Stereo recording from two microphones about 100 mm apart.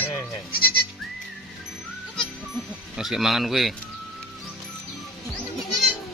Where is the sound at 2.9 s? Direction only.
5° right (ahead or behind).